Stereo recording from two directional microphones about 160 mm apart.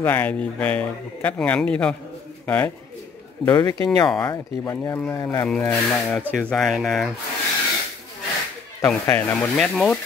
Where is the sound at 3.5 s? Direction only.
25° left (ahead or behind).